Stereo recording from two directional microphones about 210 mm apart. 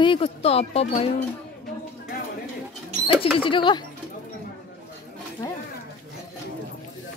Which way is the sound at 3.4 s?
25° left (ahead or behind).